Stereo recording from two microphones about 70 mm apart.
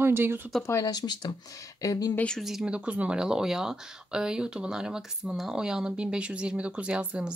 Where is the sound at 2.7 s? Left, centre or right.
Centre.